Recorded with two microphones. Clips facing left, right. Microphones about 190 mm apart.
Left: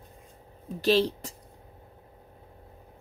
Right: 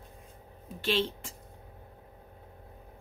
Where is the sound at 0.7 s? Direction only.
40° left (ahead or behind).